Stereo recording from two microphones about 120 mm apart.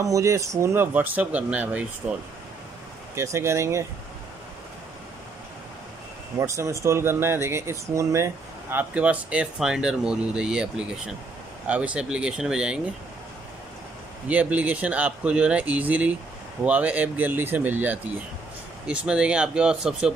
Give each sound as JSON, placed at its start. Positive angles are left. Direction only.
{"t": 0.0, "sound": "speech", "side_deg": -25}
{"t": 3.2, "sound": "speech", "side_deg": -25}
{"t": 6.3, "sound": "speech", "side_deg": -25}
{"t": 14.2, "sound": "speech", "side_deg": -10}